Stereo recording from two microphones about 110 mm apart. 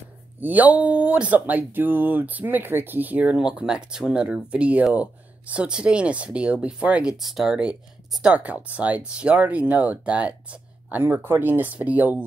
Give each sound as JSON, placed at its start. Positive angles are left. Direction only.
{"t": 0.4, "sound": "speech", "side_deg": -15}